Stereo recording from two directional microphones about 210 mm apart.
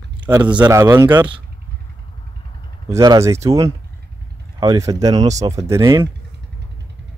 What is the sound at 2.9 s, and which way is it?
Speech, 15° right (ahead or behind).